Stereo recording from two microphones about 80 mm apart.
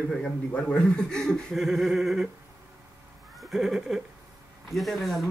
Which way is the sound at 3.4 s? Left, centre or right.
Centre.